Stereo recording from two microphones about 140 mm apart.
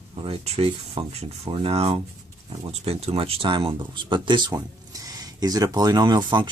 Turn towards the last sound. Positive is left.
turn(degrees=-30)  # may be behind; listen again after turning